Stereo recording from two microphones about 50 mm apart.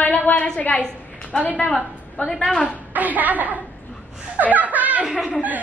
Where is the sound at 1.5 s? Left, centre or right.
Centre.